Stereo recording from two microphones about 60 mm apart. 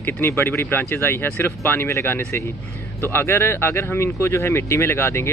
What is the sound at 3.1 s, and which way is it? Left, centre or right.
Speech, left.